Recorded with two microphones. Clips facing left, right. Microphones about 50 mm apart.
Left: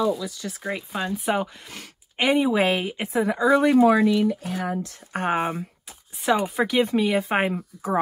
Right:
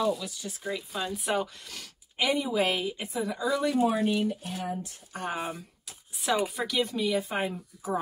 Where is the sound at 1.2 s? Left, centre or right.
Centre.